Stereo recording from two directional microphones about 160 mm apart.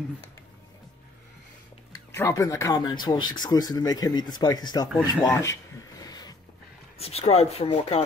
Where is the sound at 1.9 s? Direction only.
20° left (ahead or behind).